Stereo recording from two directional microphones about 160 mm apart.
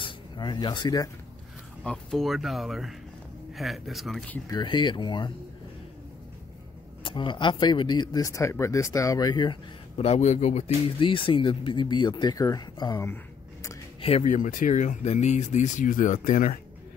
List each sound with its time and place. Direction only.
0.0 s speech: 25° left (ahead or behind)
1.8 s speech: 5° left (ahead or behind)
4.5 s speech: 30° left (ahead or behind)
7.0 s speech: 30° left (ahead or behind)
9.9 s speech: 40° left (ahead or behind)
11.0 s speech: 30° left (ahead or behind)
12.9 s a sound: 15° left (ahead or behind)
14.0 s speech: 40° left (ahead or behind)